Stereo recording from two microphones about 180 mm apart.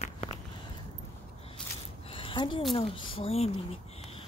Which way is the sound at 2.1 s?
30° left (ahead or behind).